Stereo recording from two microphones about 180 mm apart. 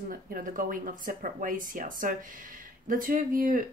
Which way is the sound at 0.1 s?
50° right (ahead or behind).